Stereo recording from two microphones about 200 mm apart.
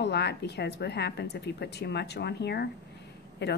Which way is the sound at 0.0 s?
55° left (ahead or behind).